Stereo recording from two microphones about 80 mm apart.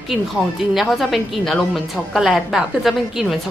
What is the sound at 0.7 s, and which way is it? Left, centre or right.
A woman's voice, centre.